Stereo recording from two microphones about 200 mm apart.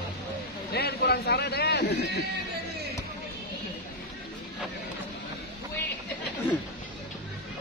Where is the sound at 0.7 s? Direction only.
55° left (ahead or behind).